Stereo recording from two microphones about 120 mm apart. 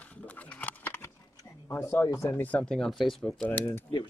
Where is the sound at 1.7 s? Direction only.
15° left (ahead or behind).